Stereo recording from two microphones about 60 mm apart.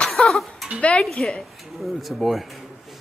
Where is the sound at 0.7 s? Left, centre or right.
Centre.